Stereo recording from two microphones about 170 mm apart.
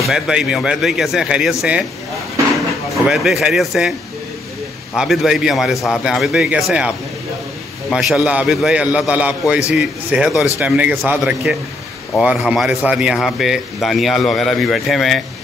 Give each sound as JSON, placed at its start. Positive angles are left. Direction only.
{"t": 0.0, "sound": "a man's voice", "side_deg": 0}
{"t": 3.1, "sound": "a man's voice", "side_deg": 0}
{"t": 4.9, "sound": "a man's voice", "side_deg": 0}
{"t": 7.9, "sound": "a man's voice", "side_deg": 0}